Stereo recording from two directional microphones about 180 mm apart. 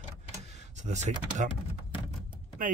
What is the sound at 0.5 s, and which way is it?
Speech, 40° right (ahead or behind).